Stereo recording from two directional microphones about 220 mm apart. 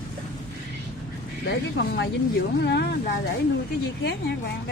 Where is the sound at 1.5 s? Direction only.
55° left (ahead or behind).